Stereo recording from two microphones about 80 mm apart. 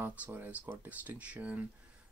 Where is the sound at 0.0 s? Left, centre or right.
Right.